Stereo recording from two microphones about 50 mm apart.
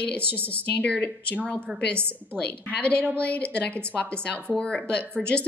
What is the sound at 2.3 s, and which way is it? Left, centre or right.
A woman's voice, left.